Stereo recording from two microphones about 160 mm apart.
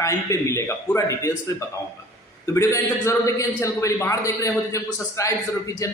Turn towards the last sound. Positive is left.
turn(degrees=20)  # may be behind; listen again after turning